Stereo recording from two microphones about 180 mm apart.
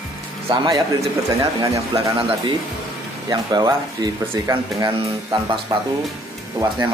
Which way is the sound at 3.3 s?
20° right (ahead or behind).